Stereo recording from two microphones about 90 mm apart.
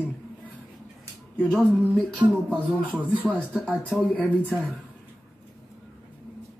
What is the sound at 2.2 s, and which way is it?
Speech, 60° right (ahead or behind).